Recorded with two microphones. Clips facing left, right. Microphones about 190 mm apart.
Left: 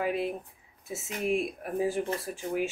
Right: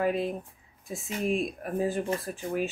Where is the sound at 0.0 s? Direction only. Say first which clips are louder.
Right 2 dB; 10° left (ahead or behind).